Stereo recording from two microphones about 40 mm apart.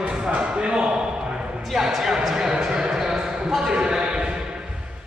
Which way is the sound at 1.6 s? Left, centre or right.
Centre.